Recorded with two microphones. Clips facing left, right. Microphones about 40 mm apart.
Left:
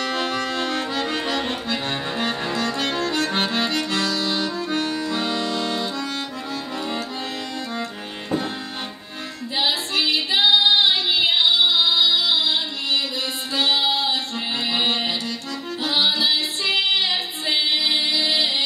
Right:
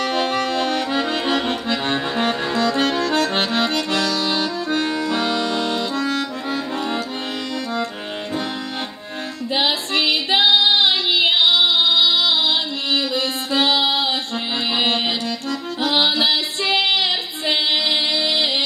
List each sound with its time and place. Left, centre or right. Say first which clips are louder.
0.0 s accordion: right 4 dB; right
9.6 s female singing: right 2 dB; right
14.7 s music: right 3 dB; right